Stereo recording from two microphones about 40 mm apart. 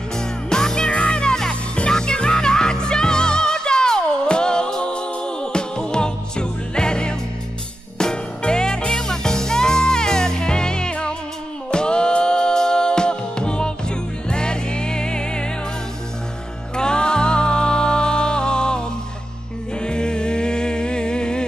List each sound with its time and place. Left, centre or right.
0.5 s music: centre
16.7 s music: left
19.8 s music: left